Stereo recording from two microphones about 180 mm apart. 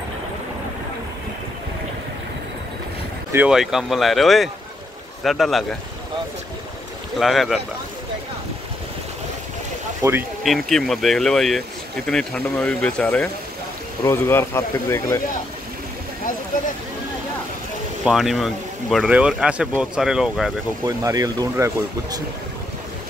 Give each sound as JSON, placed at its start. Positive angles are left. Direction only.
{"t": 3.3, "sound": "speech", "side_deg": -5}
{"t": 7.2, "sound": "speech", "side_deg": 0}
{"t": 10.0, "sound": "speech", "side_deg": -15}
{"t": 10.4, "sound": "speech", "side_deg": 0}
{"t": 18.0, "sound": "speech", "side_deg": 0}
{"t": 20.8, "sound": "speech", "side_deg": -20}